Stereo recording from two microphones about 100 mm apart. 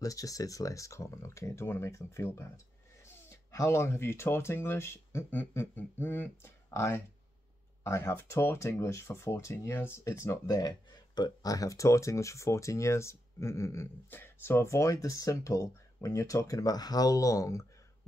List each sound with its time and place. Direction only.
0.0 s speech: 35° left (ahead or behind)
10.4 s speech: 40° left (ahead or behind)